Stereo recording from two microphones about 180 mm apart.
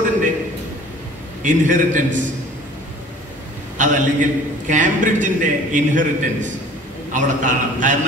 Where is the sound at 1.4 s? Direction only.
45° right (ahead or behind).